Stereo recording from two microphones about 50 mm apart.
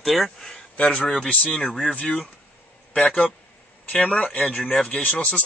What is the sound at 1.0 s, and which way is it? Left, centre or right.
Speech, centre.